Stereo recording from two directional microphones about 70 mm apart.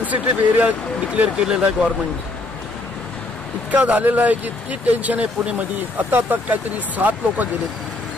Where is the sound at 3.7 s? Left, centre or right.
Right.